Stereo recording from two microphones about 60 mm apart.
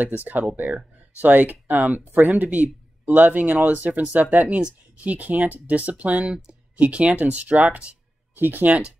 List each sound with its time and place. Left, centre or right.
0.2 s speech: right
6.2 s speech: centre
8.4 s speech: right